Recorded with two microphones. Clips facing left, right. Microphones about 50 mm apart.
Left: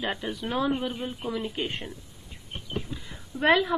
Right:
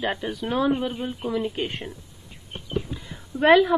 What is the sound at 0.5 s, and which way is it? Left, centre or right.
Speech, right.